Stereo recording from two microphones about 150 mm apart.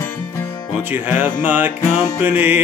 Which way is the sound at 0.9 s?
15° right (ahead or behind).